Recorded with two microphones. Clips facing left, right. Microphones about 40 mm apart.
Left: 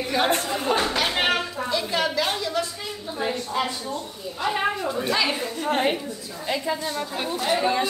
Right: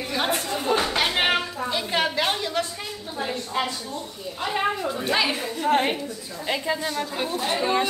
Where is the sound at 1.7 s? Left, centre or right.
Right.